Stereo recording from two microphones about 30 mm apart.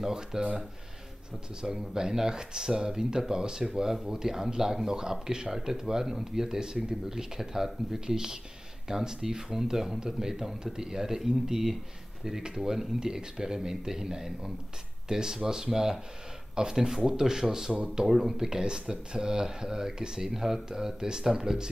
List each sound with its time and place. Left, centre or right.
0.0 s speech: centre
1.6 s speech: centre
18.0 s speech: centre
18.4 s speech: right